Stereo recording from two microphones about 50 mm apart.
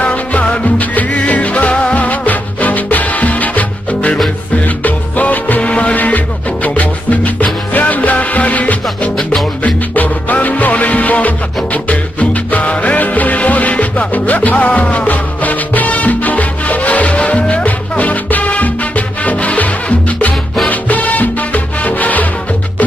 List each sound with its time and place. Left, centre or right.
0.0 s music: left